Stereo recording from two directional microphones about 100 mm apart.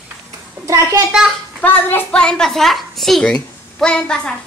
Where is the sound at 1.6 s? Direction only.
15° left (ahead or behind).